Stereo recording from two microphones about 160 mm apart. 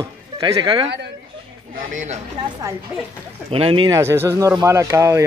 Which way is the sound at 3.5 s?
35° right (ahead or behind).